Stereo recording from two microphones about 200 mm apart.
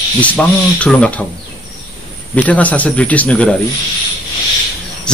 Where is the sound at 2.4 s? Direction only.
5° left (ahead or behind).